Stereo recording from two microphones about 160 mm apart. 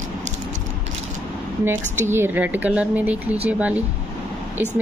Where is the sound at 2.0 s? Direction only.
15° right (ahead or behind).